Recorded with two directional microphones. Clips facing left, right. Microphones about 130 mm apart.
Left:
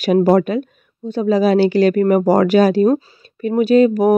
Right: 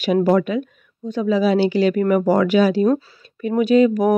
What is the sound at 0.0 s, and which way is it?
Speech, 40° left (ahead or behind).